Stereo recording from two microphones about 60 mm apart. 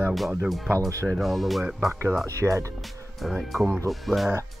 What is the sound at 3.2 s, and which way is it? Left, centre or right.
Speech, centre.